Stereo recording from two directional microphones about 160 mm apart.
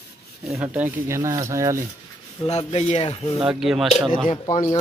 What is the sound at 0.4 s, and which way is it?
Speech, 5° right (ahead or behind).